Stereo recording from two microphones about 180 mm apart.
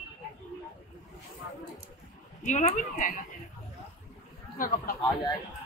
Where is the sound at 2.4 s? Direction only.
40° left (ahead or behind).